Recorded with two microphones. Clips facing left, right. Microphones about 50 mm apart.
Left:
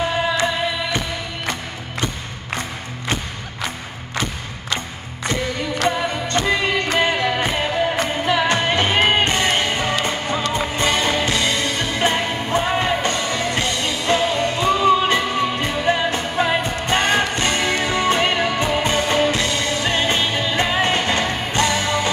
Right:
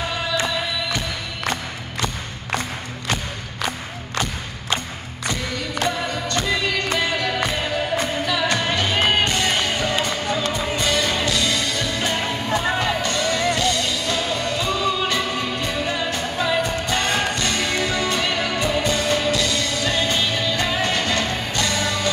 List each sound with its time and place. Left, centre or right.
5.9 s music: left